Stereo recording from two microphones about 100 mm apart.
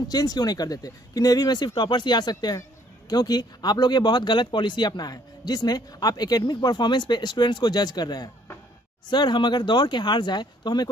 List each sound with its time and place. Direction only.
0.1 s speech: 40° left (ahead or behind)